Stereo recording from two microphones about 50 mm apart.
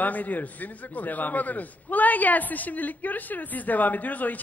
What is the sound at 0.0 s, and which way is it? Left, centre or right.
A man's voice, left.